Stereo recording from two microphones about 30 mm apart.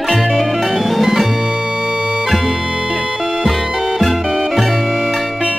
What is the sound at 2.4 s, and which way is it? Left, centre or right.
Music, centre.